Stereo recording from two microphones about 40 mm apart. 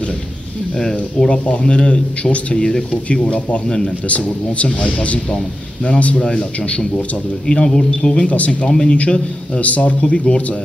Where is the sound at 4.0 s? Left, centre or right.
Left.